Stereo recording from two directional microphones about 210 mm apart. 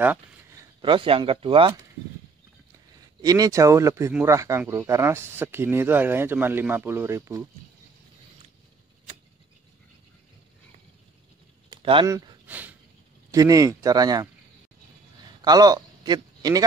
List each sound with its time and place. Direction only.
0.0 s a sound: 10° right (ahead or behind)
0.7 s speech: 25° right (ahead or behind)
3.2 s speech: 15° right (ahead or behind)
11.7 s speech: 25° right (ahead or behind)
12.4 s a sound: 10° right (ahead or behind)
13.3 s speech: 15° right (ahead or behind)
15.4 s a man's voice: 20° right (ahead or behind)